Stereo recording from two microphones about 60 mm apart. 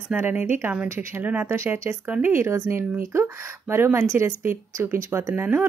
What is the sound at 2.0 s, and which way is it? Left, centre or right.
Speech, right.